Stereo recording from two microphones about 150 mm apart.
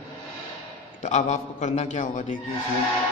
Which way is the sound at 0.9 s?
55° left (ahead or behind).